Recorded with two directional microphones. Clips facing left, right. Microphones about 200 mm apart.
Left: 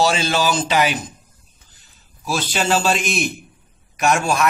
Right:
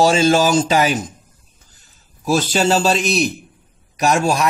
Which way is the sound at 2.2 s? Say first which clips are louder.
Right 6 dB; 45° right (ahead or behind).